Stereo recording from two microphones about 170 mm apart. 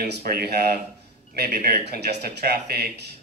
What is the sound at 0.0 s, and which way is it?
Speech, 70° right (ahead or behind).